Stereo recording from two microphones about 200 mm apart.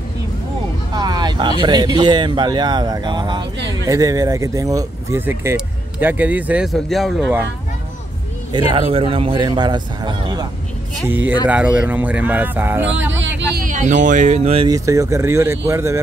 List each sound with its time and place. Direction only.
0.9 s a sound: 20° right (ahead or behind)
1.6 s speech: 20° right (ahead or behind); by 7.4 s centre (ahead or behind)
8.5 s speech: 25° right (ahead or behind)
11.1 s speech: 10° right (ahead or behind)
13.7 s speech: 40° right (ahead or behind)
14.7 s speech: 15° right (ahead or behind)